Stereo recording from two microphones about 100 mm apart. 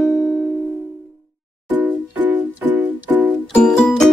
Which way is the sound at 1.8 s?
15° right (ahead or behind).